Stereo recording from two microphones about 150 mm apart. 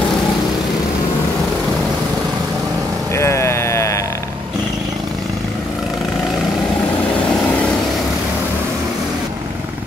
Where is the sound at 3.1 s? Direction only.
20° left (ahead or behind).